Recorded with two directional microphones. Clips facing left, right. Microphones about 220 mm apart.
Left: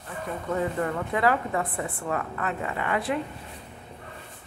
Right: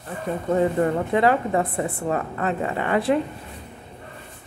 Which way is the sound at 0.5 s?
30° right (ahead or behind).